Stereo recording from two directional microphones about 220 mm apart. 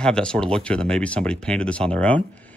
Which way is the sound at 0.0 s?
5° left (ahead or behind).